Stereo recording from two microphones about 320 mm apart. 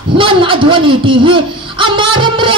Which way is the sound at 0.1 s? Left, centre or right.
Centre.